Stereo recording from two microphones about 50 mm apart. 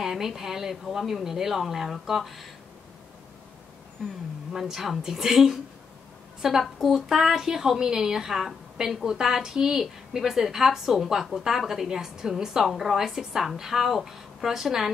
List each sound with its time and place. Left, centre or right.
0.0 s a woman's voice: centre
4.5 s a woman's voice: centre
6.6 s a woman's voice: centre